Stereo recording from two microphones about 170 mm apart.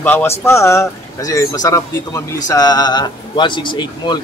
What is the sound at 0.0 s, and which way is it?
A man's voice, 10° left (ahead or behind).